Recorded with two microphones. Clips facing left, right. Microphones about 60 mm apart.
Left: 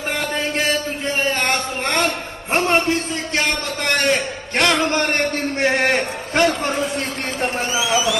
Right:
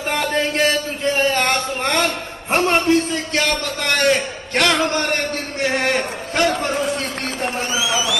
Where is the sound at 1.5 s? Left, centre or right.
Left.